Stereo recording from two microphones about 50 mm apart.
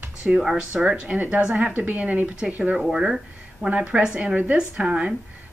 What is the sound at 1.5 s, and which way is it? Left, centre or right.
Speech, right.